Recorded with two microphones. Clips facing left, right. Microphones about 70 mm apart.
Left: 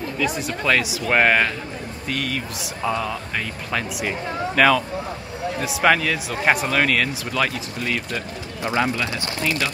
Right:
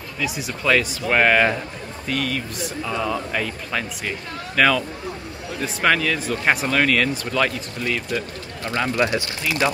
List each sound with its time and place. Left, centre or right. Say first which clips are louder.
0.2 s speech: left 1 dB; centre
8.6 s speech: left 3 dB; centre
8.9 s speech: right 6 dB; right